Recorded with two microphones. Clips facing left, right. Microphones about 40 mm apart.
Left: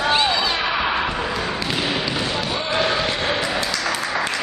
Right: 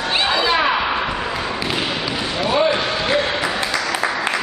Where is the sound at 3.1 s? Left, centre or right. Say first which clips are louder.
Right 3 dB; right.